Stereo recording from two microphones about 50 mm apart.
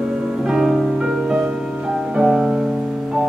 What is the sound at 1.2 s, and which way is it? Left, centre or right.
Music, centre.